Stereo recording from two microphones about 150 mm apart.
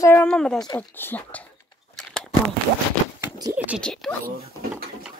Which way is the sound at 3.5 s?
10° right (ahead or behind).